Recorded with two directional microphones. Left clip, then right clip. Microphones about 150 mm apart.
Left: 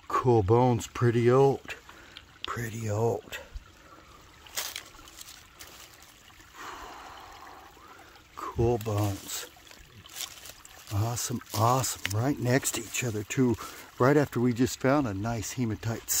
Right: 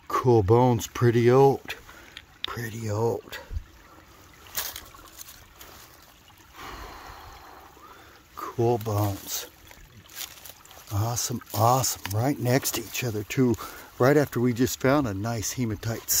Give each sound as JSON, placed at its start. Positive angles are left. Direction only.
{"t": 0.1, "sound": "speech", "side_deg": 5}
{"t": 2.5, "sound": "speech", "side_deg": 25}
{"t": 6.6, "sound": "a sound", "side_deg": 5}
{"t": 8.4, "sound": "speech", "side_deg": 5}
{"t": 10.9, "sound": "speech", "side_deg": 5}